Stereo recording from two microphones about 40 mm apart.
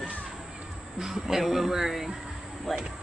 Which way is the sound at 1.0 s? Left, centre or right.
Centre.